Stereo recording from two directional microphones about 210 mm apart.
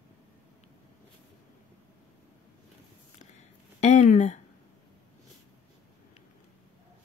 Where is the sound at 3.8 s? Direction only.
35° left (ahead or behind).